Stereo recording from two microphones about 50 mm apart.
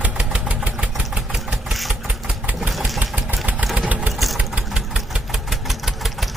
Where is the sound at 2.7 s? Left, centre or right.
Centre.